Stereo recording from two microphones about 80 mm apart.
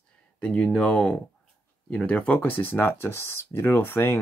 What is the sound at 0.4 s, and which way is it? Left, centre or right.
Speech, centre.